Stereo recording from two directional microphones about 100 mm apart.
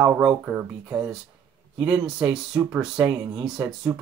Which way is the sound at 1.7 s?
10° right (ahead or behind).